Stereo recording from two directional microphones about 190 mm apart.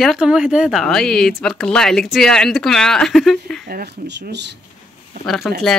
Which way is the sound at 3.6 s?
55° right (ahead or behind).